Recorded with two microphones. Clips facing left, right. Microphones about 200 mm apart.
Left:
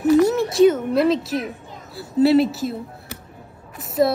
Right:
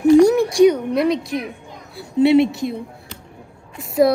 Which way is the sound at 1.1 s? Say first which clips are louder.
Even; 5° left (ahead or behind).